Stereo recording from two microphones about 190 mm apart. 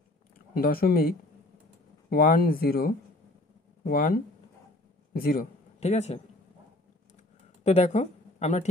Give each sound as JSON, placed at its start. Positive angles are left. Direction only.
{"t": 0.6, "sound": "speech", "side_deg": 50}
{"t": 5.8, "sound": "a man's voice", "side_deg": 35}
{"t": 7.6, "sound": "speech", "side_deg": 35}